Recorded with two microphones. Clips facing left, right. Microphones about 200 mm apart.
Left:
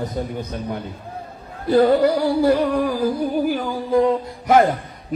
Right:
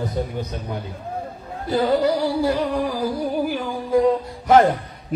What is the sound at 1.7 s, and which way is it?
Music, 55° left (ahead or behind).